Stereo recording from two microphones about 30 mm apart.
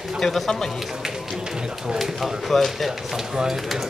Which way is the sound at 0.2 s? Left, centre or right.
Centre.